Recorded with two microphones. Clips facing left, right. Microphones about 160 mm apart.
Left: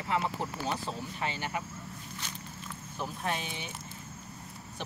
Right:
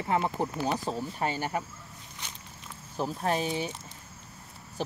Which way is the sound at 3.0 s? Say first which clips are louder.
Right 6 dB; 35° right (ahead or behind).